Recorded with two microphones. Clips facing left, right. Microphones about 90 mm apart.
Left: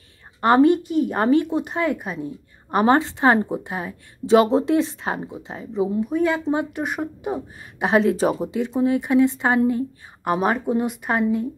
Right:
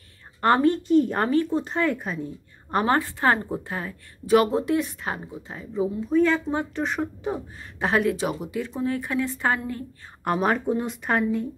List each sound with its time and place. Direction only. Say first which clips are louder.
0.7 s a woman's voice: left 1 dB; 10° left (ahead or behind)
7.9 s speech: left 5 dB; 30° left (ahead or behind)
8.5 s a woman's voice: left 6 dB; 20° left (ahead or behind)
10.2 s speech: left 2 dB; 5° left (ahead or behind)